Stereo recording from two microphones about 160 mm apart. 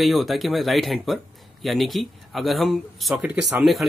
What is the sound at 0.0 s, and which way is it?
Speech, centre (ahead or behind).